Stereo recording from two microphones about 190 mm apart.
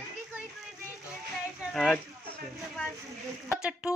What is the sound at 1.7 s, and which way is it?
Speech, 5° left (ahead or behind).